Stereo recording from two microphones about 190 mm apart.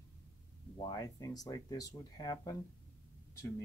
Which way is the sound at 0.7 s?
20° left (ahead or behind).